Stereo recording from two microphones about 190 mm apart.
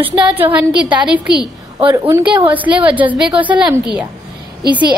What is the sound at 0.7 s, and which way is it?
Speech, 25° right (ahead or behind).